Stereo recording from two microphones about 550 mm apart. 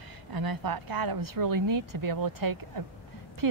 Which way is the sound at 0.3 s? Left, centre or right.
Right.